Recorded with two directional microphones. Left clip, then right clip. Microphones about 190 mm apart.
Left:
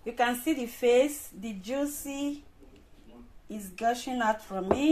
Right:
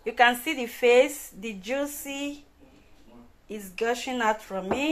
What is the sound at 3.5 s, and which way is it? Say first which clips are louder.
Speech: right 1 dB; 10° right (ahead or behind).